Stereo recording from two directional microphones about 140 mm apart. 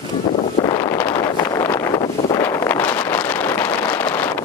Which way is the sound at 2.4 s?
20° left (ahead or behind).